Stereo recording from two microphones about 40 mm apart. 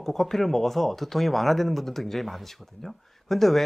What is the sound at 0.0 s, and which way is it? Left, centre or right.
Speech, centre.